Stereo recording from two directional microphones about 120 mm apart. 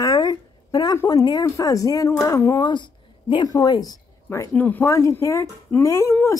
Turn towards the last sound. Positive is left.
turn(degrees=25)  # may be behind; listen again after turning